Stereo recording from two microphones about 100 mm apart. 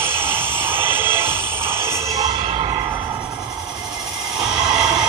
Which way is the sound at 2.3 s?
60° right (ahead or behind).